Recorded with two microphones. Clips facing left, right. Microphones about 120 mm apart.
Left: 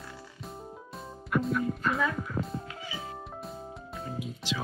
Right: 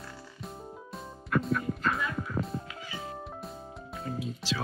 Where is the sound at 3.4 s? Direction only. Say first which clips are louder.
Left 1 dB; centre (ahead or behind).